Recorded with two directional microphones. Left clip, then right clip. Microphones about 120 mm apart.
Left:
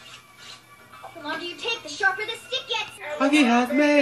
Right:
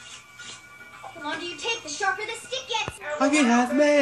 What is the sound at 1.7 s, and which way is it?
Speech, 45° left (ahead or behind).